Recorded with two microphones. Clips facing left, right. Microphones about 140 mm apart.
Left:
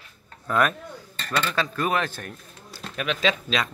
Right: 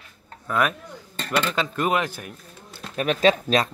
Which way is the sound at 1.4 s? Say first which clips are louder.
Right 1 dB; 20° right (ahead or behind).